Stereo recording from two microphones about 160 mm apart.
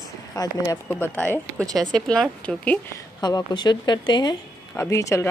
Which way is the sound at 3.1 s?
25° left (ahead or behind).